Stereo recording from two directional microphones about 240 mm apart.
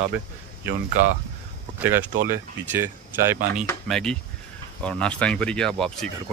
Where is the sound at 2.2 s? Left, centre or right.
Centre.